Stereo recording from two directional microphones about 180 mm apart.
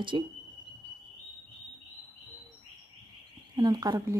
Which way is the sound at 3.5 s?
20° right (ahead or behind).